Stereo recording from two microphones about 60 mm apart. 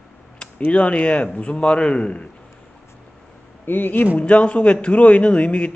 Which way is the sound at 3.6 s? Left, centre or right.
Left.